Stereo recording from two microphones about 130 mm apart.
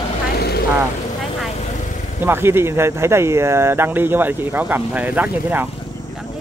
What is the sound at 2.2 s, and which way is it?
Speech, 15° right (ahead or behind).